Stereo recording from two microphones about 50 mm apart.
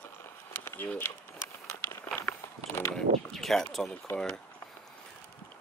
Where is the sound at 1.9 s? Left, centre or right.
Left.